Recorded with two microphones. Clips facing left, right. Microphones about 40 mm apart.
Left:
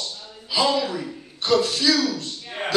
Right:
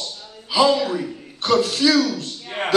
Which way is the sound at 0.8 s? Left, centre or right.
Right.